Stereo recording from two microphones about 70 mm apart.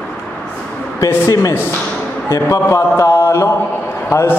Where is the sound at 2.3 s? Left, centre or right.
Left.